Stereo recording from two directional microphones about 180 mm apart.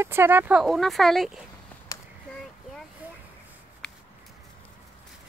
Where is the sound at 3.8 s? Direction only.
5° left (ahead or behind).